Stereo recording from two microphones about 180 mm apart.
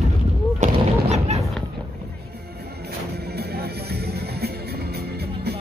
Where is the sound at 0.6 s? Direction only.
40° right (ahead or behind).